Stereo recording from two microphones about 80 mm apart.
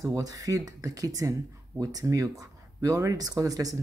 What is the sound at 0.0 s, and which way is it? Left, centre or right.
Speech, right.